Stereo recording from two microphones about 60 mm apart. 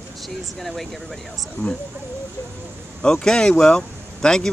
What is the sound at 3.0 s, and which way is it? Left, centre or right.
Speech, centre.